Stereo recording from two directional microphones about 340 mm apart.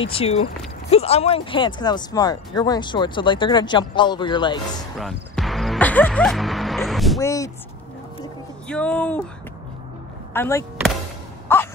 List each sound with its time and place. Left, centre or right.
0.0 s speech: centre
4.9 s music: centre
8.6 s speech: centre
10.3 s speech: centre
11.4 s a sound: centre